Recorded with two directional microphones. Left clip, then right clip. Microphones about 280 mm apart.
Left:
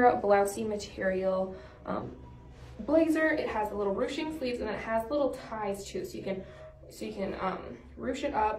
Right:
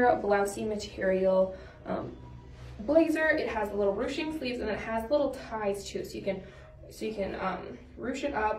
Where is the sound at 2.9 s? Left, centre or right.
Centre.